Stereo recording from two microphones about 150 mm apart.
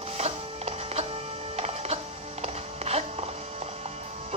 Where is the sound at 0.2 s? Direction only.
45° right (ahead or behind).